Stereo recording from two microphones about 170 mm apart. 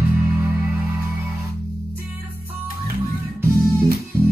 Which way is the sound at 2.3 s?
60° right (ahead or behind).